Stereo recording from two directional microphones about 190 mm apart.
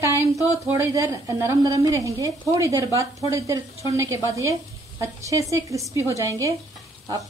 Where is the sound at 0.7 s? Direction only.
15° right (ahead or behind).